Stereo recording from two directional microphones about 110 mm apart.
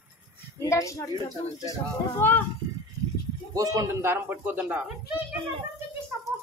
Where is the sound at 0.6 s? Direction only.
30° left (ahead or behind).